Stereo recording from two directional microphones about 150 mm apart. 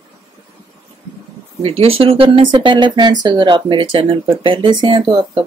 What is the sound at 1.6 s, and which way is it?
Speech, 40° right (ahead or behind).